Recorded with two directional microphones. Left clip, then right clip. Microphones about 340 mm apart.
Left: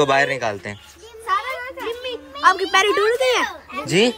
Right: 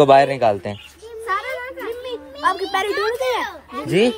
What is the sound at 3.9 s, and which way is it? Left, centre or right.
Speech, centre.